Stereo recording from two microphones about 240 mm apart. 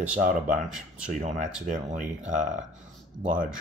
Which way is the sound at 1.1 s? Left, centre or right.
Right.